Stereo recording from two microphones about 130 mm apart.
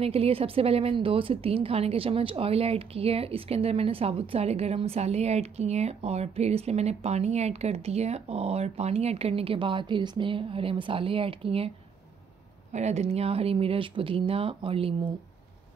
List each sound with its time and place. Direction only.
0.0 s speech: 50° right (ahead or behind)
12.7 s speech: 60° right (ahead or behind)